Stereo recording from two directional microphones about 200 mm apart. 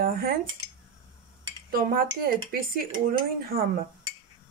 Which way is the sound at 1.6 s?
45° right (ahead or behind).